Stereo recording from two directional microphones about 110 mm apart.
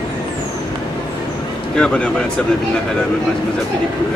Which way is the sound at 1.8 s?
10° left (ahead or behind).